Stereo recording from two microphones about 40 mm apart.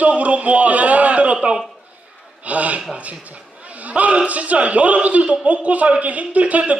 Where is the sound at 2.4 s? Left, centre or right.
Right.